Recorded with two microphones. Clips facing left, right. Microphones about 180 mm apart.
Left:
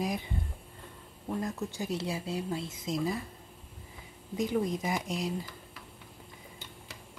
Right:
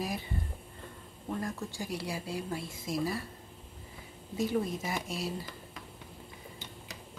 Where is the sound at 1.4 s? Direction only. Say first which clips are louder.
Left 2 dB; 20° left (ahead or behind).